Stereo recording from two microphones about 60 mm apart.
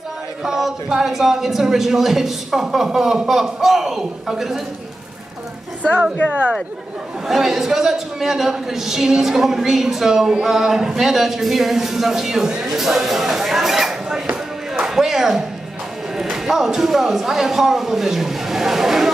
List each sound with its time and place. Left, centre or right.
0.4 s speech: centre
5.8 s a woman's voice: centre
7.2 s a man's voice: centre
12.8 s a sound: centre
16.2 s speech: centre